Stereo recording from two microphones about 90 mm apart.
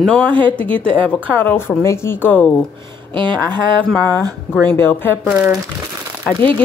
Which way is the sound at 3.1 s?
60° right (ahead or behind).